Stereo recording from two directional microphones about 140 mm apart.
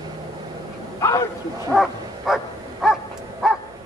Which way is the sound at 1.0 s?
25° left (ahead or behind).